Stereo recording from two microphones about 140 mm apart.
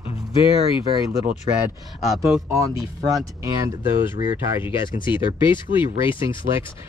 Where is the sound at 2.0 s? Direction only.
Centre (ahead or behind).